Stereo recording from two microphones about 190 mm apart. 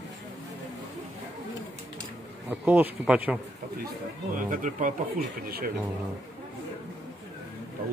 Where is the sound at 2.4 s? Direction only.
10° right (ahead or behind).